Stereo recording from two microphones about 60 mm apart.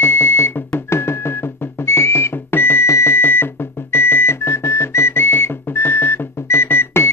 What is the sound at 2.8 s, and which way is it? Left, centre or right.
Music, left.